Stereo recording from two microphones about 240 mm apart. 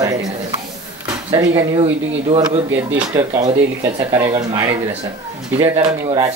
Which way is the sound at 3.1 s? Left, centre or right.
Centre.